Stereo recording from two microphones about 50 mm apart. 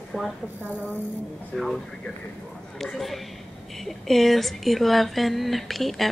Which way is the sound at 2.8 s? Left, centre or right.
Centre.